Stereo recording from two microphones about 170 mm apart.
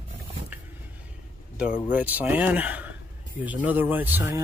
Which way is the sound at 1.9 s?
10° right (ahead or behind).